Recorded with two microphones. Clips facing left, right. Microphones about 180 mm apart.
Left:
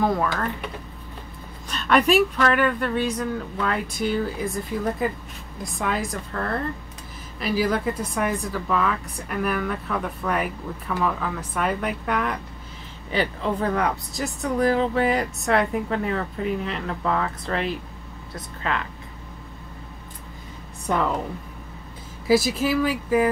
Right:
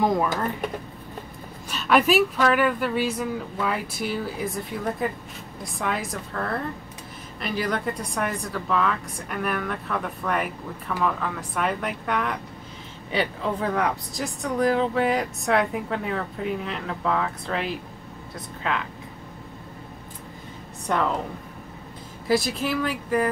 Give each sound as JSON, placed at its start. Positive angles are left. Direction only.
{"t": 0.0, "sound": "speech", "side_deg": -15}
{"t": 1.7, "sound": "speech", "side_deg": -5}
{"t": 22.3, "sound": "speech", "side_deg": 5}